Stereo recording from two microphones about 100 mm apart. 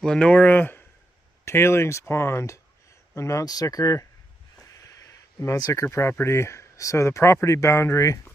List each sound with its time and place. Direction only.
0.0 s speech: 10° left (ahead or behind); by 8.2 s 30° left (ahead or behind)